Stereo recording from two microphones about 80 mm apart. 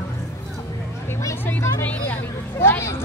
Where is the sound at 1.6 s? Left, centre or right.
Left.